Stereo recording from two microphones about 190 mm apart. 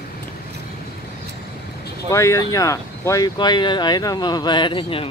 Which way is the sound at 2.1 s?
15° left (ahead or behind).